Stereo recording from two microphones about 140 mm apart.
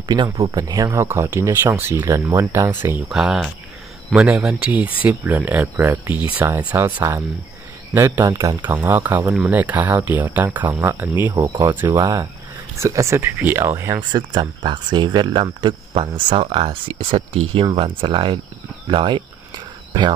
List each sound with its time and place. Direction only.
0.1 s speech: 30° right (ahead or behind)
3.1 s speech: 5° right (ahead or behind); by 8.7 s 25° right (ahead or behind)
8.7 s speech: 15° right (ahead or behind)
11.3 s speech: 30° right (ahead or behind)
14.1 s speech: 35° right (ahead or behind)